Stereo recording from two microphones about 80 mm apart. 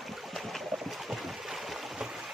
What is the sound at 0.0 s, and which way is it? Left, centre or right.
Boat, centre.